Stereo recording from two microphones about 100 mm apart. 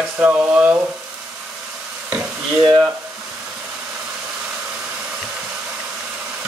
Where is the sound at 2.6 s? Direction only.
40° right (ahead or behind).